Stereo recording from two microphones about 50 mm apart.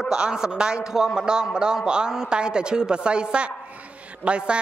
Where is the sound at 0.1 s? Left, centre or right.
Centre.